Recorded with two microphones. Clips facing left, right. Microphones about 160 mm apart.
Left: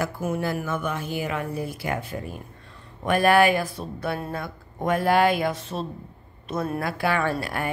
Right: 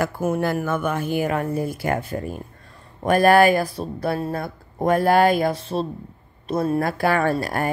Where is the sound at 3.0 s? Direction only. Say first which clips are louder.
Right 4 dB; 40° right (ahead or behind).